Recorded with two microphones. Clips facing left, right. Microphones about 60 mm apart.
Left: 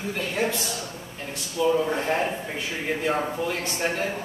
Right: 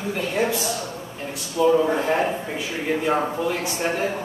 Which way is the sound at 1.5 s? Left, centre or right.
Centre.